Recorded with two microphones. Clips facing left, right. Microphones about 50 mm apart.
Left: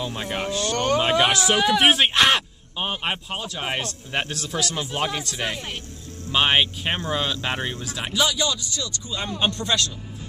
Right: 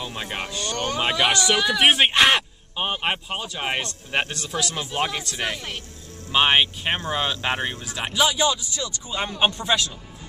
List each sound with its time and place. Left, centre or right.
0.0 s speech: centre
7.1 s speech: centre
7.8 s speech: centre